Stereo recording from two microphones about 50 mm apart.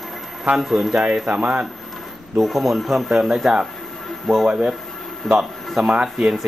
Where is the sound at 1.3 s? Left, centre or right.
Right.